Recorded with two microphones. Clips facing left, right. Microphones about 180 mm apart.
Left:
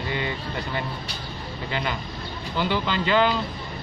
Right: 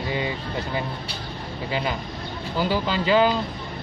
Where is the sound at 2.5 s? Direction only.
40° right (ahead or behind).